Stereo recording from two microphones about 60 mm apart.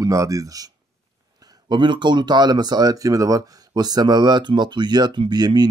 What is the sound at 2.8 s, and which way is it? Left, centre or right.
Speech, right.